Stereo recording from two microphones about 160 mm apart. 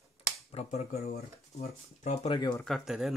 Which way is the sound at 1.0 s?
80° left.